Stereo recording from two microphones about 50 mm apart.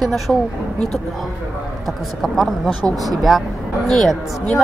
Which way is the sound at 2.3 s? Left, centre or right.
Centre.